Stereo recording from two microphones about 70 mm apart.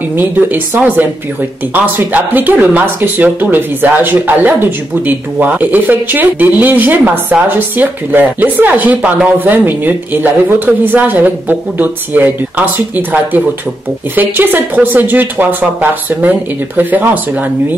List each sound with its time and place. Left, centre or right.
0.2 s speech: right